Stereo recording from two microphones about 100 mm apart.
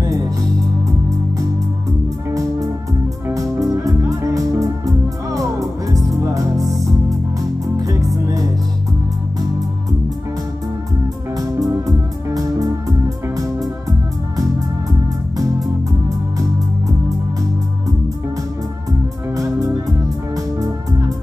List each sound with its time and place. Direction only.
2.2 s music: 35° right (ahead or behind)
11.3 s music: 40° right (ahead or behind)
18.9 s music: 35° right (ahead or behind)